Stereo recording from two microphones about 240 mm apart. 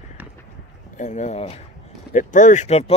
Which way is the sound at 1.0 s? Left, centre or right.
Left.